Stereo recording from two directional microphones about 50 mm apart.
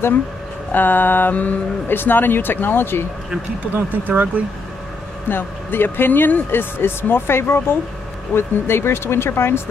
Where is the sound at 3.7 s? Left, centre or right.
Right.